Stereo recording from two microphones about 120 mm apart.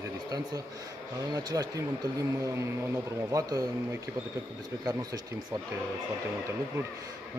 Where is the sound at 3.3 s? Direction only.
30° right (ahead or behind).